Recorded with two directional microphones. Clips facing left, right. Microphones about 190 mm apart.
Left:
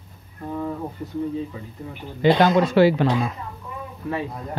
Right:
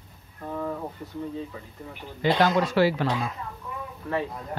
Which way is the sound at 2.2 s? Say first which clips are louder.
Left 5 dB; 20° left (ahead or behind).